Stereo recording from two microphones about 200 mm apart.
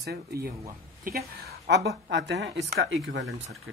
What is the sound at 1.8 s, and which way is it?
Speech, 60° right (ahead or behind).